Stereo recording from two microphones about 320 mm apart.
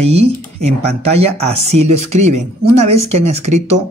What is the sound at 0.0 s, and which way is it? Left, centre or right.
Speech, centre.